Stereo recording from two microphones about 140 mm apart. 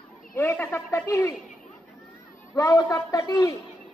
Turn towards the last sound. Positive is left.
turn(degrees=25)  # may be behind; listen again after turning